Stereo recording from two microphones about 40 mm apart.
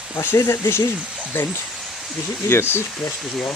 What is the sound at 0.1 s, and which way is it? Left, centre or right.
Speech, left.